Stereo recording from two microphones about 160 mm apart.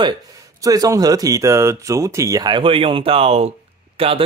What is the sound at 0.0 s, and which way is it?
Speech, 25° right (ahead or behind).